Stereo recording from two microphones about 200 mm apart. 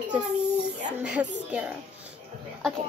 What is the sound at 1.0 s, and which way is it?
Speech, 5° right (ahead or behind).